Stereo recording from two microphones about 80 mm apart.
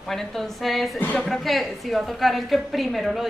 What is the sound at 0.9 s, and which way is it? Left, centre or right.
Speech, left.